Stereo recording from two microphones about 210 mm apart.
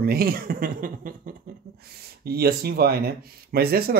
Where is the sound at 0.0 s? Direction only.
45° right (ahead or behind).